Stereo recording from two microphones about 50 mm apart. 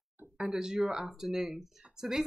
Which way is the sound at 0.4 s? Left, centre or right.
Centre.